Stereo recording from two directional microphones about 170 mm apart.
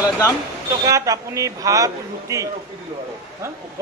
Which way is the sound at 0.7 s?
20° right (ahead or behind).